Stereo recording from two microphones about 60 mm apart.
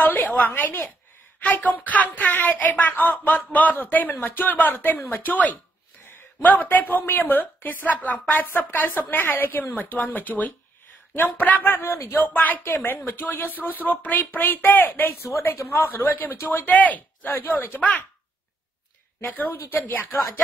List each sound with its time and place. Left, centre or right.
0.5 s a woman's voice: left
13.5 s speech: right
13.7 s a woman's voice: left
15.2 s a woman's voice: left
15.8 s a woman's voice: left
19.2 s a woman's voice: left